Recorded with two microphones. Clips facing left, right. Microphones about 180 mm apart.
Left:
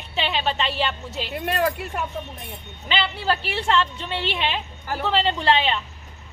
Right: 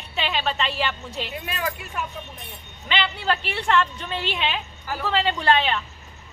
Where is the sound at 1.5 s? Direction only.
70° left (ahead or behind).